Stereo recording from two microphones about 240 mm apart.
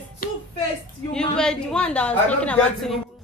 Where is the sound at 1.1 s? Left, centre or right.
Centre.